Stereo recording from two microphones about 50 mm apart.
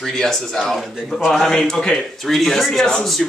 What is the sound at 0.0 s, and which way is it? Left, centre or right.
A man's voice, centre.